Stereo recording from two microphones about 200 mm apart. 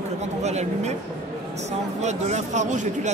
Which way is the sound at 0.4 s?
35° right (ahead or behind).